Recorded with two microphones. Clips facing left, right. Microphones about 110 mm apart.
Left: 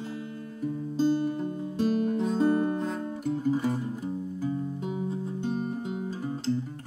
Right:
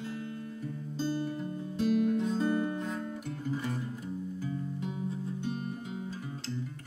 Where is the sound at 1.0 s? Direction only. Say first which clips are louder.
Left 7 dB; 25° left (ahead or behind).